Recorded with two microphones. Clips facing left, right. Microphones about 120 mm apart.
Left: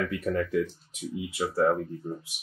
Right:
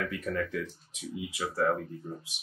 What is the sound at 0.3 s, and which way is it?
Speech, 30° left (ahead or behind).